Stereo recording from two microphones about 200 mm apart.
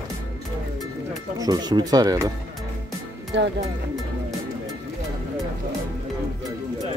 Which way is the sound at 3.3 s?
60° right (ahead or behind).